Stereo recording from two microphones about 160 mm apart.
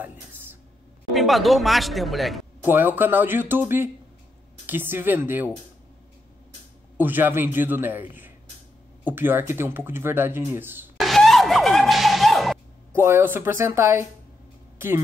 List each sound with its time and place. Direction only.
0.0 s a sound: 15° right (ahead or behind)
1.1 s speech: centre (ahead or behind)
2.7 s speech: 10° right (ahead or behind)
7.0 s speech: 10° right (ahead or behind)
11.0 s a sound: centre (ahead or behind)
12.9 s speech: 15° right (ahead or behind)